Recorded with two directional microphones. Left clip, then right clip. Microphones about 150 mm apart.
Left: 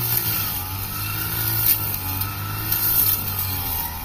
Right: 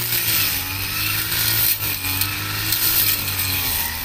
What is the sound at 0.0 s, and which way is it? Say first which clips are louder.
Vehicle: right 6 dB; 45° left (ahead or behind).